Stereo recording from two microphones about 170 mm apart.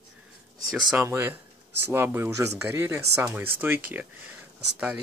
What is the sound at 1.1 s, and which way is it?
Speech, 15° right (ahead or behind).